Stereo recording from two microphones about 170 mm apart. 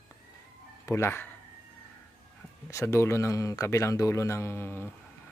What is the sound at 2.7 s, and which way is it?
Speech, 15° left (ahead or behind).